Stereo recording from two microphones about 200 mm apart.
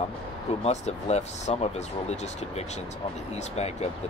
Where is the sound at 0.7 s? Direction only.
35° left (ahead or behind).